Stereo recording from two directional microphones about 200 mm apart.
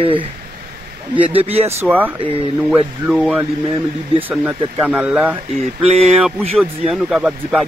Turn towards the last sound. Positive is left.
turn(degrees=0)  # may be behind; listen again after turning